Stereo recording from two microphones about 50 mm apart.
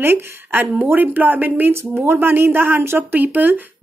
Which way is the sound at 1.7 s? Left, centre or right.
Right.